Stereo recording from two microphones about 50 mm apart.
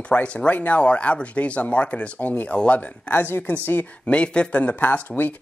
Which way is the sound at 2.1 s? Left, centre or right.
Left.